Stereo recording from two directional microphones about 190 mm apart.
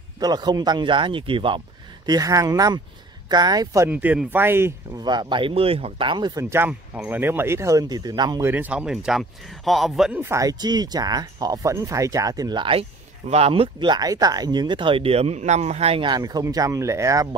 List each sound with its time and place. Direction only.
0.2 s speech: 20° right (ahead or behind)